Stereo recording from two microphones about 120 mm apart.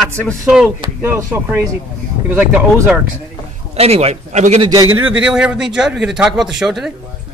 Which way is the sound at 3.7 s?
60° right (ahead or behind).